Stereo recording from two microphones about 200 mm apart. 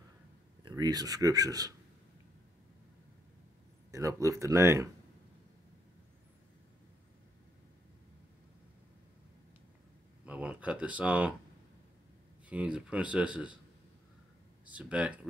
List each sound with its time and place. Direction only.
0.7 s speech: 20° right (ahead or behind)
3.9 s speech: 15° right (ahead or behind)
10.2 s speech: 5° right (ahead or behind)
12.4 s speech: 5° right (ahead or behind)
14.7 s speech: 5° right (ahead or behind)